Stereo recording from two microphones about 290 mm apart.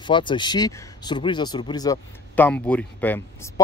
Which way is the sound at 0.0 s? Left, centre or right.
Centre.